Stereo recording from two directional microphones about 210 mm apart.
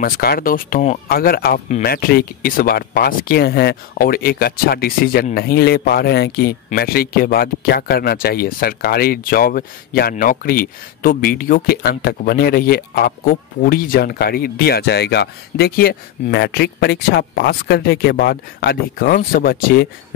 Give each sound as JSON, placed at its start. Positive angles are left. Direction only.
{"t": 0.0, "sound": "speech", "side_deg": 45}